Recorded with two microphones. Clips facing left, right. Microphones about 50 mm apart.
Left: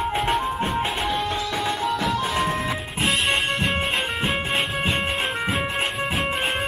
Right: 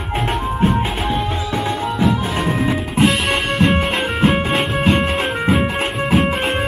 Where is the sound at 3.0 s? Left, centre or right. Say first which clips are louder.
Right 5 dB; centre.